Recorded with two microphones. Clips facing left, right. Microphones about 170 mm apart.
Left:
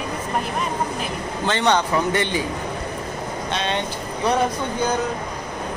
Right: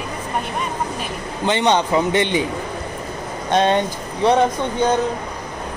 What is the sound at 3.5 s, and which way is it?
Speech, 50° right (ahead or behind).